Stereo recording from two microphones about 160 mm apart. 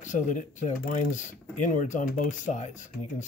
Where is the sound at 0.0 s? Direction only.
50° left (ahead or behind).